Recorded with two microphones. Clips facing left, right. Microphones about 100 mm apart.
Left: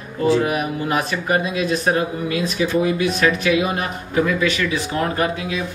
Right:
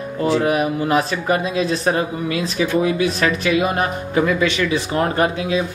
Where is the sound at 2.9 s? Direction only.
35° right (ahead or behind).